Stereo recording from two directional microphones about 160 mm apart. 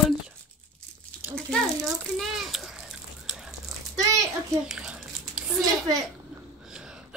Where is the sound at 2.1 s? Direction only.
Centre (ahead or behind).